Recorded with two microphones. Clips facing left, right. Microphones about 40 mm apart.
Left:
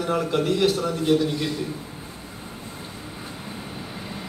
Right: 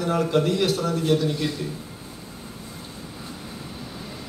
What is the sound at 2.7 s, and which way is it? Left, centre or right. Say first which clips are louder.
Vehicle: left 1 dB; left.